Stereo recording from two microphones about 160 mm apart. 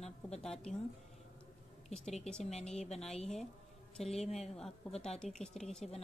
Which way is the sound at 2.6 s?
5° left (ahead or behind).